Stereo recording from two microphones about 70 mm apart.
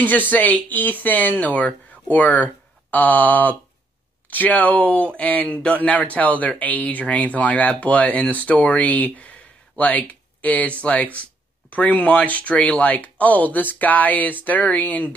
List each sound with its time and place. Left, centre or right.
0.0 s speech: left